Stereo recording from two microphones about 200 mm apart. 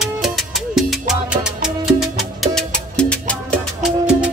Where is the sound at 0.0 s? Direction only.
Centre (ahead or behind).